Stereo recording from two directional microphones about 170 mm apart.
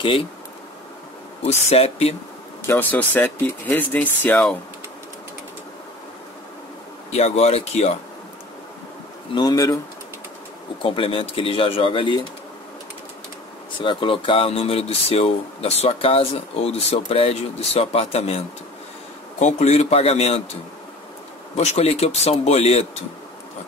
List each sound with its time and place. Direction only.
0.0 s speech: 30° left (ahead or behind)
1.4 s speech: 40° left (ahead or behind)
2.6 s speech: 10° left (ahead or behind)
7.1 s speech: 40° left (ahead or behind)
9.3 s speech: 25° left (ahead or behind)
10.8 s speech: 30° left (ahead or behind)
13.7 s speech: 30° left (ahead or behind)
19.4 s speech: 40° left (ahead or behind)
21.5 s speech: 40° left (ahead or behind)